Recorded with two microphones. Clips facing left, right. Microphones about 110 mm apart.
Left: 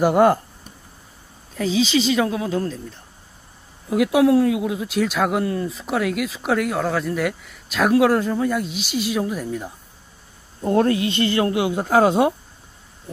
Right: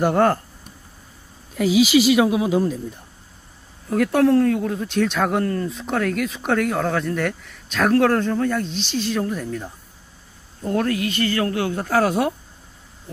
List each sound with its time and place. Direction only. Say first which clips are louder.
0.0 s speech: left 2 dB; 10° left (ahead or behind)
1.5 s a man's voice: right 4 dB; 10° right (ahead or behind)
3.9 s speech: left 1 dB; 10° left (ahead or behind)
10.6 s speech: left 4 dB; 25° left (ahead or behind)